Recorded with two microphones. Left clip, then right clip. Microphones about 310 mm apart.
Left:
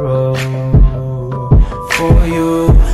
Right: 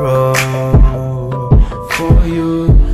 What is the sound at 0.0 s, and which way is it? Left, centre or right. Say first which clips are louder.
Music: right 3 dB; right.